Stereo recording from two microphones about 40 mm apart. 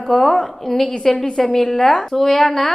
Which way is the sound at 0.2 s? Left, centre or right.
Centre.